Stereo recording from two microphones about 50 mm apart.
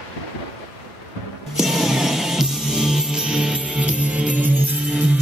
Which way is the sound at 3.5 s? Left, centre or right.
Right.